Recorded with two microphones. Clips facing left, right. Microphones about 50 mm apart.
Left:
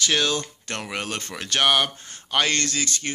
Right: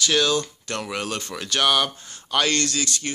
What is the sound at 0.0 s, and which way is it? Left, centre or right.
Speech, left.